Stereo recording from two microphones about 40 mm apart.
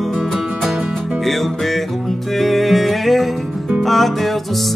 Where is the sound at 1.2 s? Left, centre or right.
Centre.